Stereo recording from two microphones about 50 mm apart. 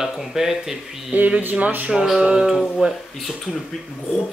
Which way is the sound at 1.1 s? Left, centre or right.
Right.